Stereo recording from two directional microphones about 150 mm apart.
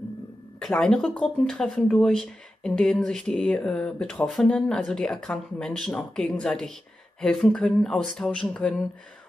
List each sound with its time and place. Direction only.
0.6 s speech: 5° left (ahead or behind)